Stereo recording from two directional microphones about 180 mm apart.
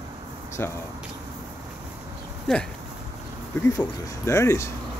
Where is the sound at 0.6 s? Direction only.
10° left (ahead or behind).